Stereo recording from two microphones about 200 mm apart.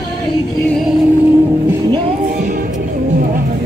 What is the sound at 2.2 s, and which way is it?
Music, 45° right (ahead or behind).